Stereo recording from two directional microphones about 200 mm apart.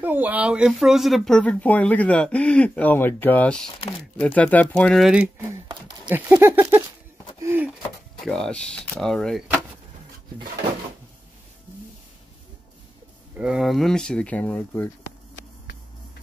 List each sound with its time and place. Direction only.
0.0 s speech: 10° right (ahead or behind)
5.5 s speech: 20° right (ahead or behind)
6.0 s speech: 10° right (ahead or behind)
7.4 s a sound: 10° right (ahead or behind)
8.3 s speech: 5° left (ahead or behind)
13.4 s speech: centre (ahead or behind)